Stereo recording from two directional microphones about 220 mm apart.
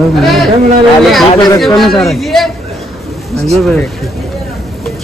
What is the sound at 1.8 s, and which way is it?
Speech, centre (ahead or behind).